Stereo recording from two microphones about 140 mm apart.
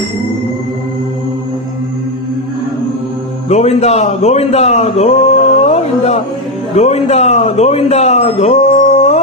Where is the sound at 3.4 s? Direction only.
55° left (ahead or behind).